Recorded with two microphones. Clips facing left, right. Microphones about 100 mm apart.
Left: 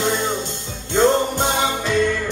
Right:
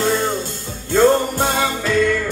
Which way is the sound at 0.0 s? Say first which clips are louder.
Right 2 dB; 20° left (ahead or behind).